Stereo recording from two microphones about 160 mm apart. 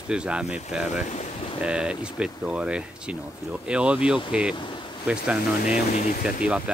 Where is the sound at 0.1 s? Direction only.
5° right (ahead or behind).